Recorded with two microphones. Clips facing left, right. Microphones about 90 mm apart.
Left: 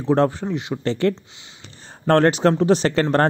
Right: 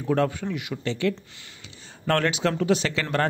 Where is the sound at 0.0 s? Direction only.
30° left (ahead or behind).